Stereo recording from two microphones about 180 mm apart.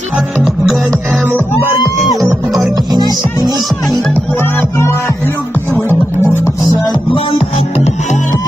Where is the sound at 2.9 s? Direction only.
20° right (ahead or behind).